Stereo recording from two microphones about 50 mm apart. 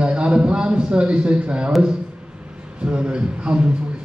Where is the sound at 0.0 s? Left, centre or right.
Right.